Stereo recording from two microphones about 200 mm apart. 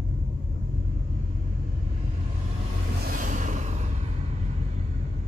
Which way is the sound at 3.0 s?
40° right (ahead or behind).